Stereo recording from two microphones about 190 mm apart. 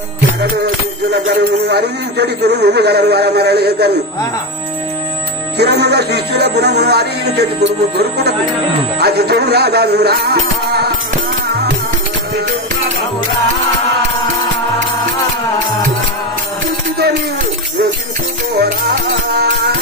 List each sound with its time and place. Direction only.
1.1 s a man's voice: 60° right (ahead or behind)
5.6 s a man's voice: 60° right (ahead or behind)
18.6 s music: 60° right (ahead or behind)